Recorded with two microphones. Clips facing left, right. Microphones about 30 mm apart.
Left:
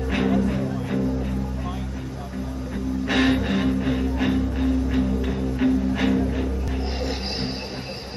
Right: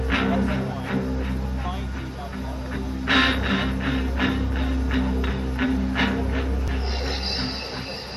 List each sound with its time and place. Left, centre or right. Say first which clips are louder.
0.1 s music: left 1 dB; right
3.1 s music: right 1 dB; right
3.3 s music: left 2 dB; right